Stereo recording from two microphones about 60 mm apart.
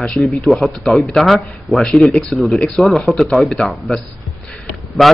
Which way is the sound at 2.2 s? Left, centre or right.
Centre.